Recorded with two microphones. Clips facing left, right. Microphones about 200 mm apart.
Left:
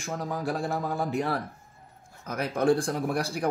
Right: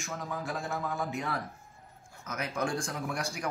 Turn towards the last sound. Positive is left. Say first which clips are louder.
# left 7 dB
turn(degrees=35)  # may be behind; listen again after turning